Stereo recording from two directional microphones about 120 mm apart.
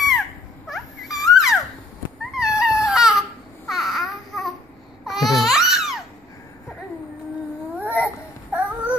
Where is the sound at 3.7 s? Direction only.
Centre (ahead or behind).